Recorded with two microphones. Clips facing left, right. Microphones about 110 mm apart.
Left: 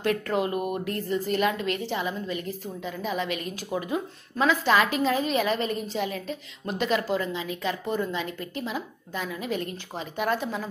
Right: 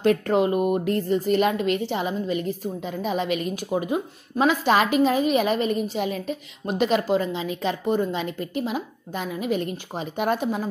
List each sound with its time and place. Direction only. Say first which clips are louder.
0.0 s a woman's voice: right 6 dB; 20° right (ahead or behind)